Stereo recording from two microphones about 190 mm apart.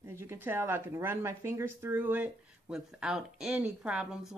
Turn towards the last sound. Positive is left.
turn(degrees=-5)  # may be behind; listen again after turning